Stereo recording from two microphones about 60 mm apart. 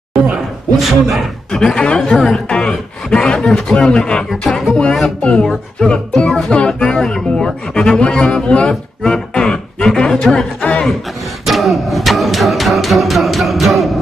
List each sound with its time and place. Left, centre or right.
0.7 s music: centre
1.8 s speech: centre
4.3 s music: centre
4.9 s speech: centre
11.4 s music: centre